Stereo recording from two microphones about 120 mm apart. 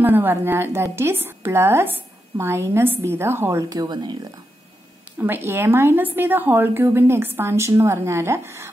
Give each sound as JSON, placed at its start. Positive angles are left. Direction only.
{"t": 0.0, "sound": "a woman's voice", "side_deg": -15}
{"t": 5.2, "sound": "a woman's voice", "side_deg": -20}